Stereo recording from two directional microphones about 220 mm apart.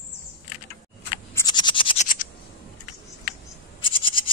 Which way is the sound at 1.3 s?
20° left (ahead or behind).